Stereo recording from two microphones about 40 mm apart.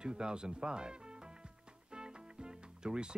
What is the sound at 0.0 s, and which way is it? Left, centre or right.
Speech, right.